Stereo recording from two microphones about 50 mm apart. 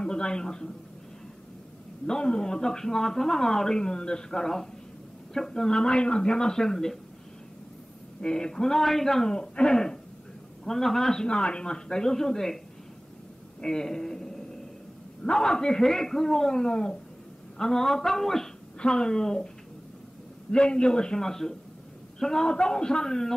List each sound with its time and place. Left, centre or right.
0.0 s speech: centre
2.0 s speech: centre
8.2 s speech: centre
11.2 s speech: centre
13.6 s a sound: centre
15.2 s speech: centre
20.5 s speech: centre